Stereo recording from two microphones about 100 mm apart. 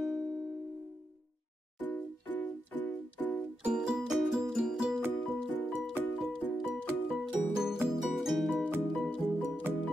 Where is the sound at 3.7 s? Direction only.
5° right (ahead or behind).